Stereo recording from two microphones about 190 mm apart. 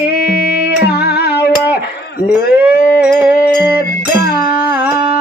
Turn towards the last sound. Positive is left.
turn(degrees=-5)  # may be behind; listen again after turning